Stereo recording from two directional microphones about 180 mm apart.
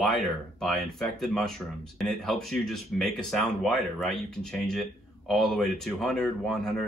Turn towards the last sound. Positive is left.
turn(degrees=5)  # may be behind; listen again after turning